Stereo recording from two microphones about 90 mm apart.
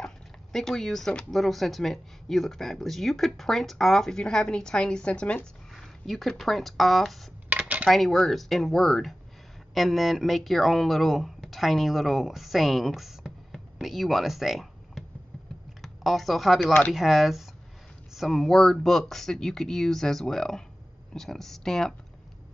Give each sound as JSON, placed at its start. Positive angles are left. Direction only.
{"t": 0.0, "sound": "speech", "side_deg": 5}
{"t": 5.8, "sound": "speech", "side_deg": 0}
{"t": 7.4, "sound": "a sound", "side_deg": -20}
{"t": 7.9, "sound": "speech", "side_deg": 0}